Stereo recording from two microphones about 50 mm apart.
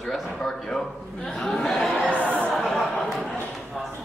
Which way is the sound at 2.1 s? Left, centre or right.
Left.